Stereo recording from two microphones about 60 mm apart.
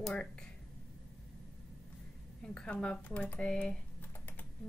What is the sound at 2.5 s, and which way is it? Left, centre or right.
A woman's voice, centre.